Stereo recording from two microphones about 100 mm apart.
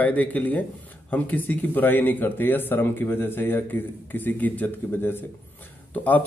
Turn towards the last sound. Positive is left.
turn(degrees=15)  # may be behind; listen again after turning